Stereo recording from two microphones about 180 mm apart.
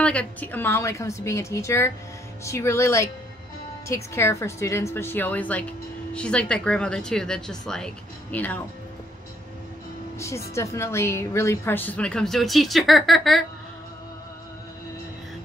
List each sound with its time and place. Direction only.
0.0 s a woman's voice: 5° left (ahead or behind)
10.1 s a woman's voice: 15° left (ahead or behind); by 13.4 s centre (ahead or behind)